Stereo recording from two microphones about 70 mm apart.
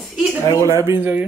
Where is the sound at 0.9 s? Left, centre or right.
Right.